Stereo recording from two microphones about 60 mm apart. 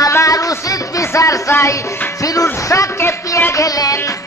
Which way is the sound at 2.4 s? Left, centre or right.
Left.